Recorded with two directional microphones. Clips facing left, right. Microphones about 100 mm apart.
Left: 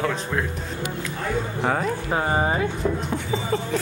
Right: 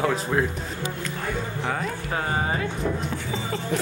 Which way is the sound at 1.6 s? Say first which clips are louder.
Left 6 dB; 40° left (ahead or behind).